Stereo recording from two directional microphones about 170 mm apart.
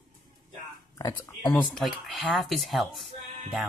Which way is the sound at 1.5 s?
5° left (ahead or behind).